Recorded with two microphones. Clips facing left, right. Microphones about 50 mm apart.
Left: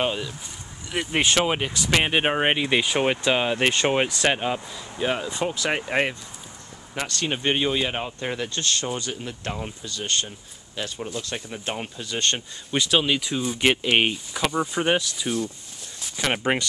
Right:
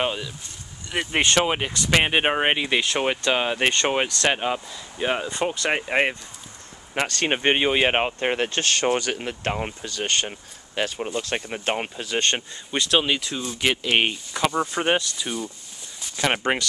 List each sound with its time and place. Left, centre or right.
0.0 s speech: centre
3.3 s speech: centre
4.3 s speech: centre
7.0 s speech: right
7.8 s speech: right
12.7 s speech: centre
13.2 s speech: centre